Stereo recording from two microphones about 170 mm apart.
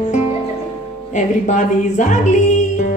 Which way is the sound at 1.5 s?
45° left (ahead or behind).